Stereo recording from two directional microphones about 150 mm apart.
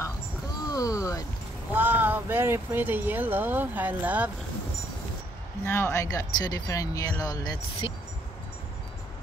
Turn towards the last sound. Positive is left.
turn(degrees=40)  # may be behind; listen again after turning